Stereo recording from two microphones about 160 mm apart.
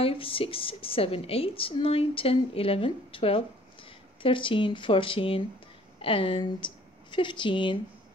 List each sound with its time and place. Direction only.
0.0 s a woman's voice: 35° left (ahead or behind)